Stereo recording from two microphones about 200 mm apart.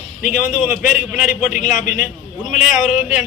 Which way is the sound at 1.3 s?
40° left (ahead or behind).